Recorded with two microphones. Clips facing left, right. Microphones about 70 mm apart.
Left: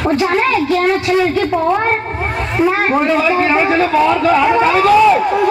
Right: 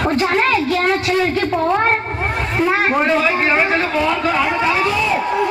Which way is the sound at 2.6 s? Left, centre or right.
Centre.